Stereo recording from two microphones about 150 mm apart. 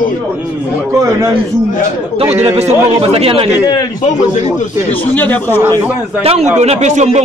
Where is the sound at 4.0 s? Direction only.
55° left (ahead or behind).